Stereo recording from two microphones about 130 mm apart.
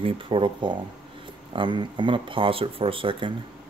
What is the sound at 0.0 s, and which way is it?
Speech, 40° right (ahead or behind).